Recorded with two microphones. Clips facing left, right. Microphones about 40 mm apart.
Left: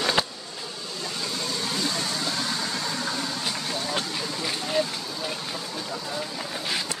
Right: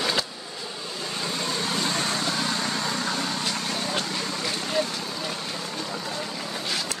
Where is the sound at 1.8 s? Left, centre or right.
Right.